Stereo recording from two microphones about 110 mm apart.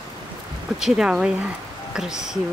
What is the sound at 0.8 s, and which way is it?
Speech, 5° right (ahead or behind).